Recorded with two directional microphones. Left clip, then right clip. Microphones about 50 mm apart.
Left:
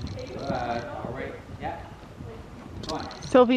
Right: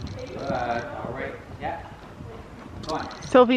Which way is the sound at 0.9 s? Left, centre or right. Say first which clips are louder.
Right 2 dB; centre.